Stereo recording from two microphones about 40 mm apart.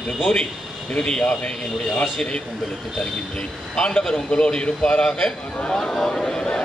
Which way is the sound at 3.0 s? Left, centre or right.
Left.